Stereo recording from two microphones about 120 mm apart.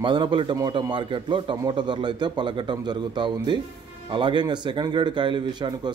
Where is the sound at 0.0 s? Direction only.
40° right (ahead or behind).